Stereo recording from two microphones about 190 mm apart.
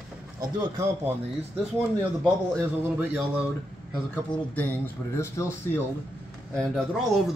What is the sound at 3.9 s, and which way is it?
A man's voice, 5° left (ahead or behind).